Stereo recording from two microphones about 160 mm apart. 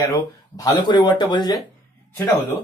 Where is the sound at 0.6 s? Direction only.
25° left (ahead or behind).